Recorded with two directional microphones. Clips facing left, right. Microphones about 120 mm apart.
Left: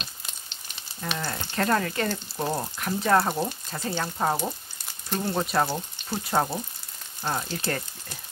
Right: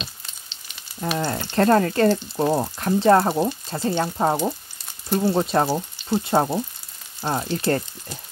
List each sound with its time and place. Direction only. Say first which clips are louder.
1.1 s speech: right 8 dB; 30° right (ahead or behind)
5.1 s speech: right 8 dB; 10° right (ahead or behind)
5.4 s speech: right 5 dB; 30° right (ahead or behind)